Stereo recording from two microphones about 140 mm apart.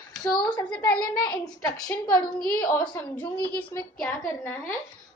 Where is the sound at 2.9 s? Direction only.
10° left (ahead or behind).